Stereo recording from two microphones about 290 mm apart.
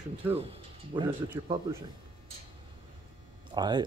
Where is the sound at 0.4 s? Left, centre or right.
Centre.